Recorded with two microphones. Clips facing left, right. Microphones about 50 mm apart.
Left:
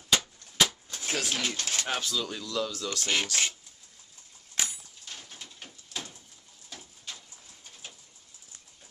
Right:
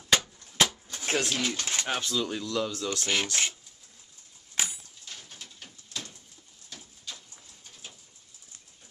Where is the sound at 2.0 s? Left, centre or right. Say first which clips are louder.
Right 2 dB; centre.